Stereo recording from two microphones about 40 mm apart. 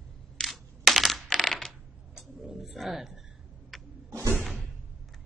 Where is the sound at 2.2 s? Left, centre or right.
Centre.